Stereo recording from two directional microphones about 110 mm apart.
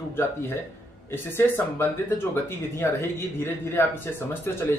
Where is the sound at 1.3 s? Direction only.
20° left (ahead or behind).